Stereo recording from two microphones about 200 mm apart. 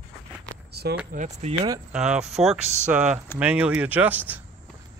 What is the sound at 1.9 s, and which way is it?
Speech, 5° right (ahead or behind).